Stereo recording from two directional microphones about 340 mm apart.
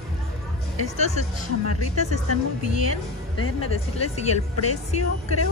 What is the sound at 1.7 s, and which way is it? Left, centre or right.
Speech, left.